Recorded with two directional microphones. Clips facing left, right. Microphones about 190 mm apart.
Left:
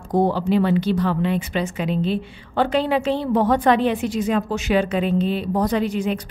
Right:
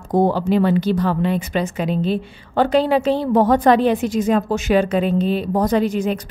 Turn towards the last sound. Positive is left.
turn(degrees=-45)  # may be behind; listen again after turning